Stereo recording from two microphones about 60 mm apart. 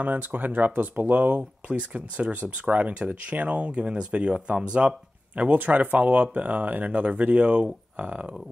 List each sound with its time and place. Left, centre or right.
0.0 s speech: right